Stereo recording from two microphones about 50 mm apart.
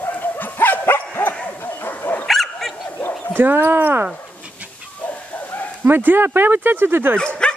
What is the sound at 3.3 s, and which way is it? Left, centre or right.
Speech, right.